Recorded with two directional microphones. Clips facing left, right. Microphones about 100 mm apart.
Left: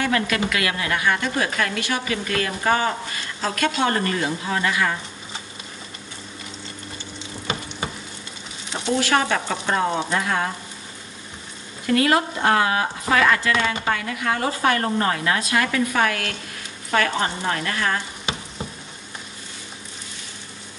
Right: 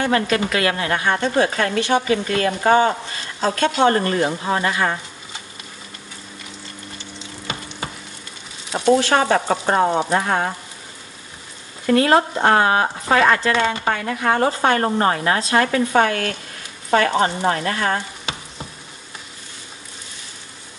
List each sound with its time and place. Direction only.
0.0 s a woman's voice: 30° right (ahead or behind)
9.0 s a woman's voice: 35° right (ahead or behind)
11.8 s a woman's voice: 35° right (ahead or behind)